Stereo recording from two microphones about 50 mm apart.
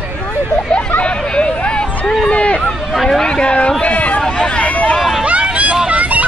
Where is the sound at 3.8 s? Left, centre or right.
Left.